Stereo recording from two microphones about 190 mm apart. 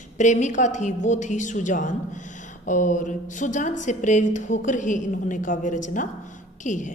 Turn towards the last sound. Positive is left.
turn(degrees=40)  # may be behind; listen again after turning